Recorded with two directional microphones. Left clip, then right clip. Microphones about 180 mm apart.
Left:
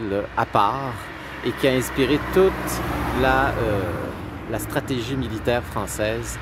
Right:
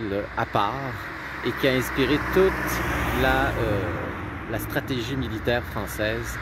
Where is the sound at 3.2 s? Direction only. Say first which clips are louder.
Left 4 dB; 10° left (ahead or behind).